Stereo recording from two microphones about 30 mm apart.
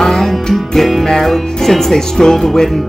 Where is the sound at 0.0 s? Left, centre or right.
Centre.